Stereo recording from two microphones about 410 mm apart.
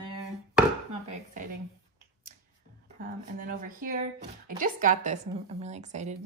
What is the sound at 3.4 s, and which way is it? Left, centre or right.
A woman's voice, centre.